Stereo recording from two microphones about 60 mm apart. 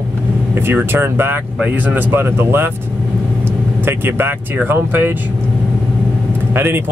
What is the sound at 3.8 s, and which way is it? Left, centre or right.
Speech, right.